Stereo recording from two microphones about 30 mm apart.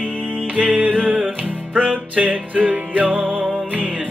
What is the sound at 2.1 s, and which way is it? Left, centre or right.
Music, right.